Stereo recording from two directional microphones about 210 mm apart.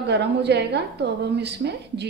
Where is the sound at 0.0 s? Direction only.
55° right (ahead or behind).